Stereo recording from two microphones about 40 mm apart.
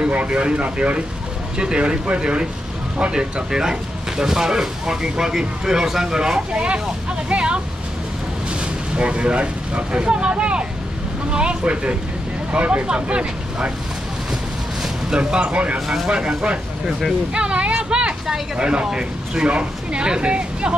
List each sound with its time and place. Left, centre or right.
0.3 s speech: right
14.8 s speech: right
16.1 s speech: right
17.3 s a sound: right
18.6 s speech: right